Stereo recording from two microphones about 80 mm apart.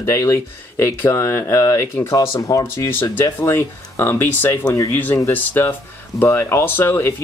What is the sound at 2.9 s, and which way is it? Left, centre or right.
Speech, left.